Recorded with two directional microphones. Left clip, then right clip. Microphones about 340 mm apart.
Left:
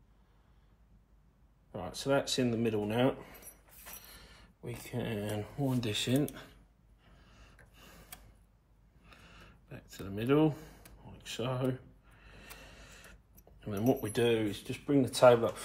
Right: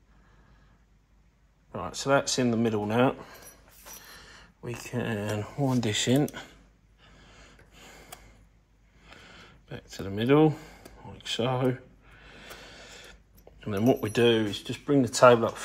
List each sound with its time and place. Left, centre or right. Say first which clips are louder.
1.8 s speech: right 6 dB; right
4.6 s speech: right 6 dB; right
7.2 s gasp: right 5 dB; centre
9.0 s a sound: right 7 dB; centre
11.2 s speech: right 8 dB; centre
12.2 s a sound: right 7 dB; centre